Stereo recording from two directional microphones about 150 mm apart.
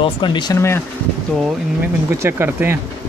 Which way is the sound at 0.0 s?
30° left (ahead or behind).